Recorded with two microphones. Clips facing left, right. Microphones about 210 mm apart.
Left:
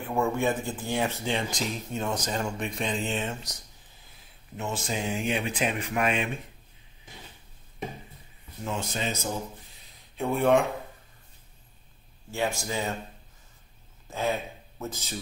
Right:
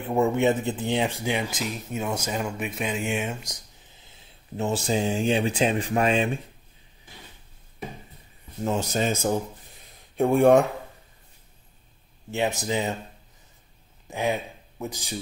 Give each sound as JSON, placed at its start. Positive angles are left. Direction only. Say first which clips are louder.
{"t": 0.0, "sound": "speech", "louder": "right 5 dB", "side_deg": -20}
{"t": 4.6, "sound": "speech", "louder": "right 7 dB", "side_deg": -30}
{"t": 8.6, "sound": "speech", "louder": "right 7 dB", "side_deg": -40}
{"t": 12.3, "sound": "speech", "louder": "right 4 dB", "side_deg": -20}
{"t": 14.1, "sound": "speech", "louder": "right 2 dB", "side_deg": -15}